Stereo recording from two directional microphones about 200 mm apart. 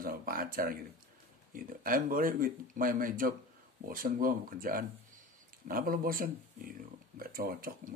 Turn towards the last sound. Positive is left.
turn(degrees=-45)  # may be behind; listen again after turning